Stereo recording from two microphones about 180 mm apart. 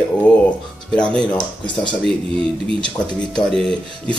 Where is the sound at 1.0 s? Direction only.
5° left (ahead or behind).